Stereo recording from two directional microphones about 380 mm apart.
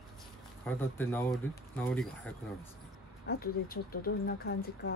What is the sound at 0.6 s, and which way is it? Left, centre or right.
Speech, centre.